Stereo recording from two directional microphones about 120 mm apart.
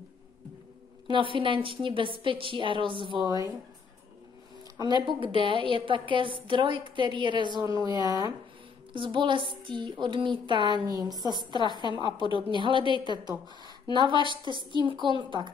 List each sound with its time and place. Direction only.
1.0 s a woman's voice: 45° right (ahead or behind)
5.0 s a woman's voice: 45° right (ahead or behind)
8.9 s a woman's voice: 45° right (ahead or behind)
10.9 s a woman's voice: 30° right (ahead or behind)